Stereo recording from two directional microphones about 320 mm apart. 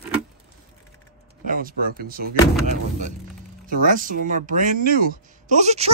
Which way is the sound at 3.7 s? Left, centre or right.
Right.